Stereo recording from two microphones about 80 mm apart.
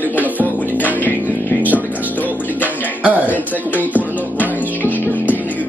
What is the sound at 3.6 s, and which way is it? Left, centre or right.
Music, left.